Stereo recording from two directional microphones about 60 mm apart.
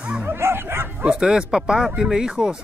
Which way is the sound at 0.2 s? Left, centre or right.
Right.